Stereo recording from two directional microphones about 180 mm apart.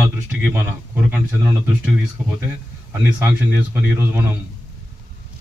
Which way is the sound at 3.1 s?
10° right (ahead or behind).